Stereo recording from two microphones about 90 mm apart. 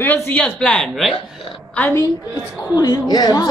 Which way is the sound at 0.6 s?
10° left (ahead or behind).